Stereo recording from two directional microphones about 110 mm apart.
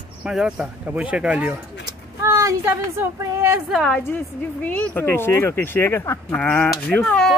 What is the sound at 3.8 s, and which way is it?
Speech, 10° left (ahead or behind).